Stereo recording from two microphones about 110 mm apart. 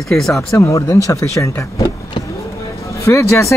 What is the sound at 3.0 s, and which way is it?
Speech, 25° left (ahead or behind).